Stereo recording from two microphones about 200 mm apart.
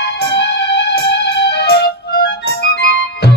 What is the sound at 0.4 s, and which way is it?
Music, 55° left (ahead or behind).